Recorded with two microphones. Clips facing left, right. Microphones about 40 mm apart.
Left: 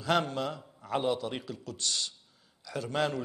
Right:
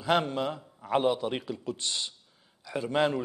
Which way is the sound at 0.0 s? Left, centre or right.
Right.